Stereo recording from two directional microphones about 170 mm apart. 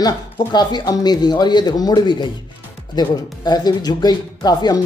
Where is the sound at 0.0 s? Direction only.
25° left (ahead or behind).